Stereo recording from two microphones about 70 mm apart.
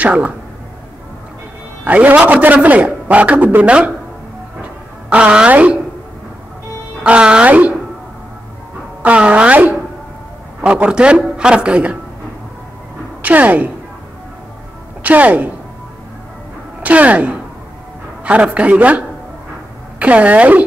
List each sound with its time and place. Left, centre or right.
0.0 s speech: right
1.9 s a man's voice: centre
5.1 s a man's voice: centre
7.0 s a man's voice: centre
9.0 s a man's voice: centre
13.2 s a man's voice: right
15.0 s a man's voice: right
16.8 s a man's voice: right